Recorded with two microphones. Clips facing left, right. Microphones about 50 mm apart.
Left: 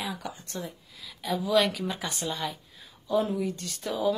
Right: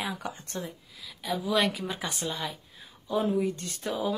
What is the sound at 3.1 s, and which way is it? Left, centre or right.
Speech, centre.